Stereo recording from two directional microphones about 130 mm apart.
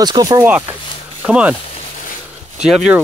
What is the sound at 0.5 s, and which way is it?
Speech, 15° right (ahead or behind).